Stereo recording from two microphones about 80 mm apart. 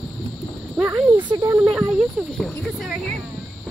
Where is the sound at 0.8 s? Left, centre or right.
Right.